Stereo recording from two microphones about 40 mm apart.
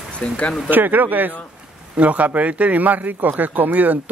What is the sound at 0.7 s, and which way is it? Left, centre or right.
Speech, right.